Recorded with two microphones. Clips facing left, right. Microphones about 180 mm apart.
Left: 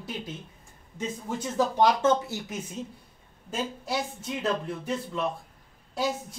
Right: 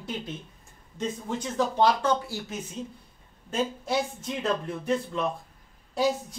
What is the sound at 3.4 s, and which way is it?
Speech, centre (ahead or behind).